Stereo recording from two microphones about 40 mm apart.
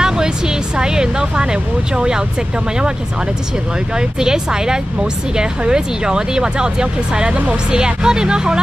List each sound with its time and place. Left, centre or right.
0.0 s vehicle: centre
3.9 s speech: centre